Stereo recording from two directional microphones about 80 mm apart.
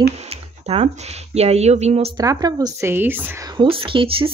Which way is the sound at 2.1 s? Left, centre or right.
Right.